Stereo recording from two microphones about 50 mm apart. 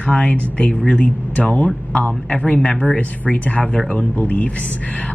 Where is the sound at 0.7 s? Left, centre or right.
Centre.